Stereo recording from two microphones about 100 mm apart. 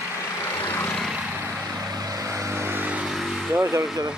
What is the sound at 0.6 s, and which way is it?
Vehicle, 15° left (ahead or behind).